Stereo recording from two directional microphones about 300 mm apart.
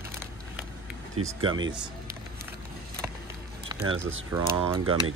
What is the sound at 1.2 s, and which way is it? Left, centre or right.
Speech, right.